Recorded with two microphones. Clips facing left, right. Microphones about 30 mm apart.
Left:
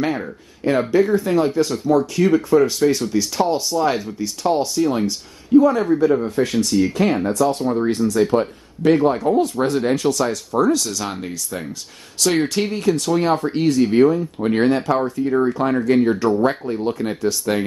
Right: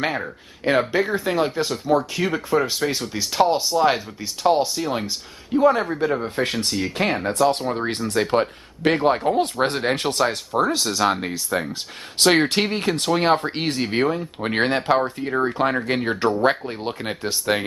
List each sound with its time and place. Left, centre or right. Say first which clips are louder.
0.0 s speech: left 2 dB; right
5.6 s speech: left 2 dB; right